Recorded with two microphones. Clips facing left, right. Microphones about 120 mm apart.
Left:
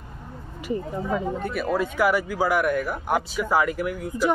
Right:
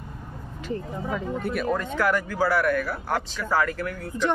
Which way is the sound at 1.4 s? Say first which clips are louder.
Left 1 dB; centre (ahead or behind).